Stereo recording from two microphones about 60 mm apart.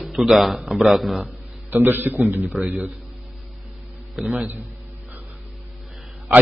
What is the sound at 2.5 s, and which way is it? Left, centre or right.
Speech, centre.